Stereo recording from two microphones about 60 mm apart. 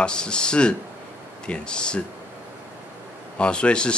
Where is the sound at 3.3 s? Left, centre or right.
Centre.